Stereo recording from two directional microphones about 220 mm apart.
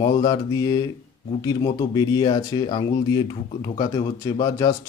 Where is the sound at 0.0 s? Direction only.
20° left (ahead or behind).